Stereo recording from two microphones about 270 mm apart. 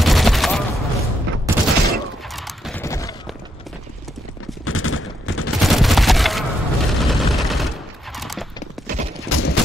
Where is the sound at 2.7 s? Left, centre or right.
Centre.